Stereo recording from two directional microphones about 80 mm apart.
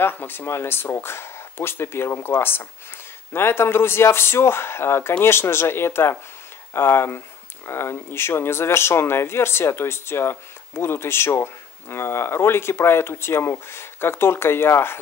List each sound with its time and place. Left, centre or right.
0.0 s speech: left